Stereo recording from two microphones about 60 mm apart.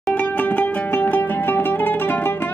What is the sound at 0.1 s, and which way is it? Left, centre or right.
Music, left.